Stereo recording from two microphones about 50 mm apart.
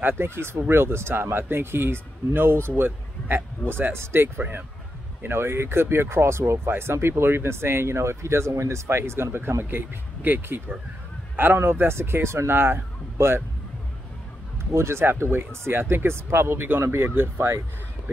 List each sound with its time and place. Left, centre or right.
0.0 s speech: right
11.3 s speech: right
14.6 s speech: right